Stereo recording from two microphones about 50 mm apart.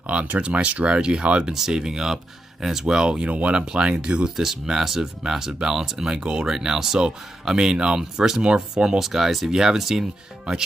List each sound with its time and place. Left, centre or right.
0.0 s speech: right
1.4 s speech: centre
4.4 s speech: centre